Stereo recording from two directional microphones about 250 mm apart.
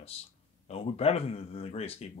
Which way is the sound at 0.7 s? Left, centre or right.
Left.